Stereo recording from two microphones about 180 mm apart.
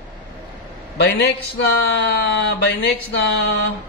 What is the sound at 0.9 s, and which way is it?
Speech, 70° left (ahead or behind).